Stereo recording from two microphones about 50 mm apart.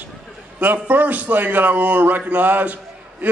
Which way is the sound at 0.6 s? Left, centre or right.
Right.